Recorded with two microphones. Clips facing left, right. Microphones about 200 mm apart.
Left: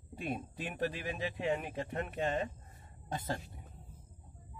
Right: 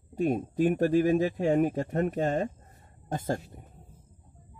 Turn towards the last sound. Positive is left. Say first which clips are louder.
# right 7 dB
turn(degrees=-45)  # may be behind; listen again after turning